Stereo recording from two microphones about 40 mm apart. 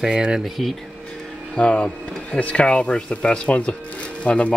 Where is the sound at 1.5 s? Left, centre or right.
Left.